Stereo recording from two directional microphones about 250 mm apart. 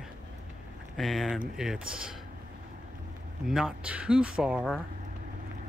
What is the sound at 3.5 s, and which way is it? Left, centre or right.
Speech, centre.